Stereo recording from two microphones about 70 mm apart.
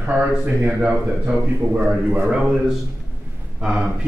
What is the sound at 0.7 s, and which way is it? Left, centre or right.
Speech, centre.